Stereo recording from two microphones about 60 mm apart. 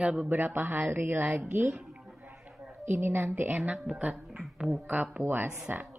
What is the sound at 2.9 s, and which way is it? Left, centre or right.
Speech, right.